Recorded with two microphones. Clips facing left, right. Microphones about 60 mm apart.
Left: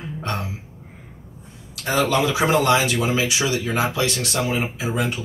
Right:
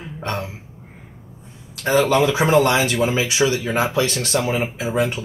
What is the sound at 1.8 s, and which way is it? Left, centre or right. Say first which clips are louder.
Speech: right 4 dB; right.